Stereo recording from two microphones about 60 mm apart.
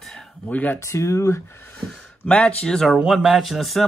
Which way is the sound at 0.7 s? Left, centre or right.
Left.